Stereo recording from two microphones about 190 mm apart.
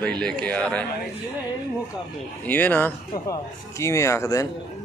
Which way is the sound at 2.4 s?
10° left (ahead or behind).